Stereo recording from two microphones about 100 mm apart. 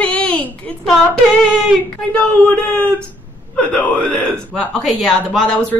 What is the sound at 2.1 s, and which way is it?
Speech, 15° left (ahead or behind).